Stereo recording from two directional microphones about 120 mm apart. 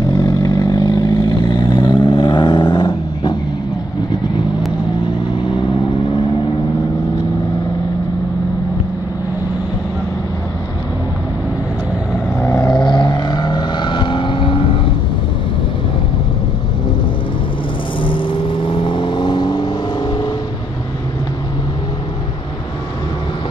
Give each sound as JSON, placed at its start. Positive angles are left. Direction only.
{"t": 0.0, "sound": "vehicle", "side_deg": 35}
{"t": 12.4, "sound": "vehicle", "side_deg": 25}
{"t": 18.0, "sound": "vehicle", "side_deg": 45}